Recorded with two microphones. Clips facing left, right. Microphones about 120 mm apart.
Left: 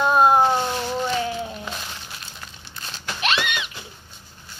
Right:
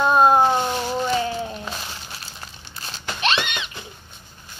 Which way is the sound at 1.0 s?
Centre (ahead or behind).